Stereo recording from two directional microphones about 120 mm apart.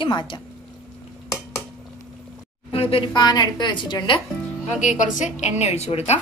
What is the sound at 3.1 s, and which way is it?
A woman's voice, 35° left (ahead or behind).